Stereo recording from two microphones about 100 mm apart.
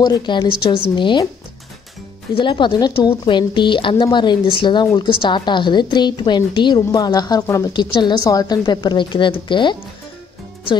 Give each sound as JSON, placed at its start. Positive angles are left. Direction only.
{"t": 0.0, "sound": "a woman's voice", "side_deg": 45}
{"t": 2.3, "sound": "a woman's voice", "side_deg": 50}
{"t": 7.7, "sound": "a woman's voice", "side_deg": 50}